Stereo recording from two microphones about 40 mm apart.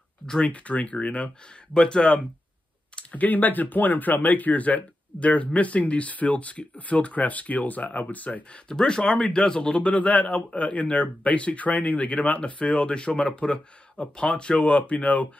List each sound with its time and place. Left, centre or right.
0.5 s speech: left
1.7 s speech: left
3.1 s speech: left
8.6 s speech: centre
9.8 s speech: left
14.6 s speech: left